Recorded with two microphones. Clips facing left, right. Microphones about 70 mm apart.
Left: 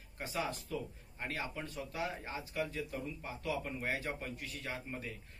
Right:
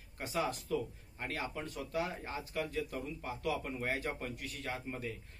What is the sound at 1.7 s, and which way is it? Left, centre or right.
A man's voice, right.